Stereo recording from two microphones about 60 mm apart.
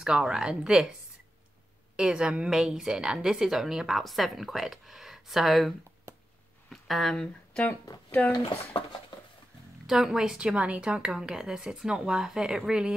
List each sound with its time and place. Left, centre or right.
0.0 s a woman's voice: centre
2.0 s a woman's voice: centre
6.7 s a sound: centre
8.2 s speech: left
9.8 s a woman's voice: centre